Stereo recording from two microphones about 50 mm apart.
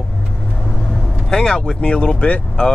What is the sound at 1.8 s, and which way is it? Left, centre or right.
Speech, left.